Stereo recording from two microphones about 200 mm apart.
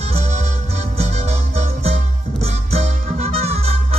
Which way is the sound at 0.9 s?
35° right (ahead or behind).